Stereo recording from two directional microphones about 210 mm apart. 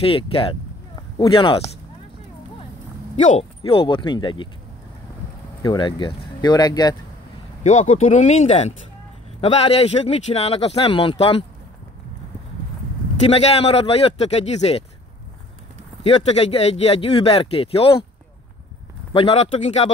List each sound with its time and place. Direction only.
0.0 s speech: 25° left (ahead or behind)
3.3 s speech: 30° left (ahead or behind)
5.6 s speech: 20° left (ahead or behind)
7.6 s speech: 30° left (ahead or behind)
13.3 s speech: 30° left (ahead or behind)
16.0 s speech: 30° left (ahead or behind)
19.1 s speech: 30° left (ahead or behind)